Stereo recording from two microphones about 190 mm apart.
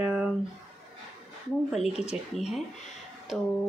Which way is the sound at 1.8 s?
35° left (ahead or behind).